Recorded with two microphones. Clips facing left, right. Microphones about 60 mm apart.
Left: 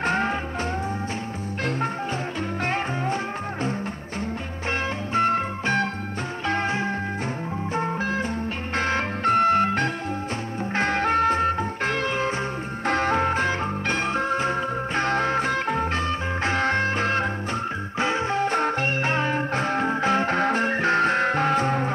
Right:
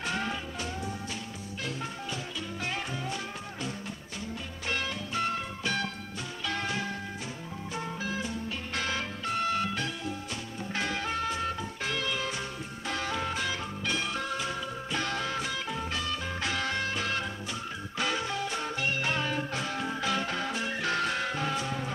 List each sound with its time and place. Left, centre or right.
0.0 s music: left
2.6 s music: left
4.6 s music: left